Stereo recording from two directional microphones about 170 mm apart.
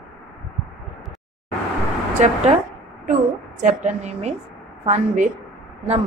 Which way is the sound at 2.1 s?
40° right (ahead or behind).